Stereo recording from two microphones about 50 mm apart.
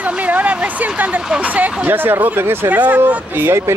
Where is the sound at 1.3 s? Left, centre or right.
Right.